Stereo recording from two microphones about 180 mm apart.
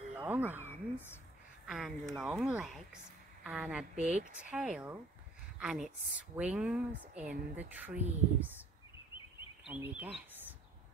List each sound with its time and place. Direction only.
0.1 s speech: 10° right (ahead or behind)
1.7 s a woman's voice: centre (ahead or behind)
3.9 s speech: 40° right (ahead or behind)
4.5 s a woman's voice: 5° right (ahead or behind)
9.7 s speech: 10° right (ahead or behind)